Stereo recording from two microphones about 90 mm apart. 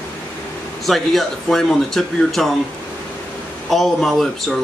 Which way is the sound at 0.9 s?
5° left (ahead or behind).